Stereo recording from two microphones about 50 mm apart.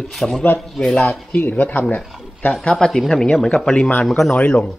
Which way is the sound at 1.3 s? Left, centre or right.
Left.